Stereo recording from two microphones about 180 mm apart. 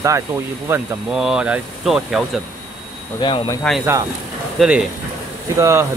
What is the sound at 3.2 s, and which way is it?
Speech, 25° left (ahead or behind).